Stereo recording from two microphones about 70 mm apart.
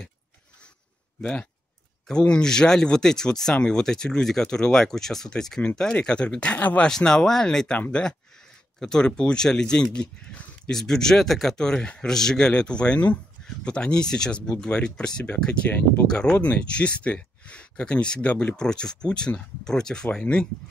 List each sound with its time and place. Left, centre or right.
1.2 s speech: centre